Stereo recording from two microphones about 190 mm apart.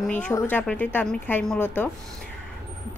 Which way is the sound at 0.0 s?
5° left (ahead or behind).